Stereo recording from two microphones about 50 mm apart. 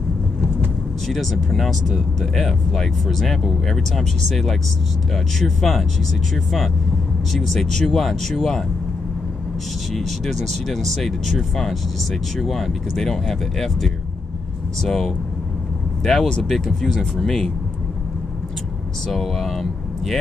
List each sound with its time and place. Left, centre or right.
1.0 s speech: centre
9.9 s speech: centre
19.1 s speech: centre